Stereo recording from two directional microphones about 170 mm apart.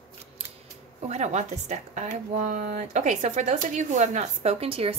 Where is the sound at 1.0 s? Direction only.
40° right (ahead or behind).